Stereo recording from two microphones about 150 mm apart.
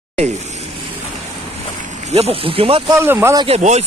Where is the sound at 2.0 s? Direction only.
45° right (ahead or behind).